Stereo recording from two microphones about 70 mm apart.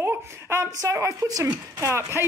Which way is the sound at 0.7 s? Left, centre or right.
Right.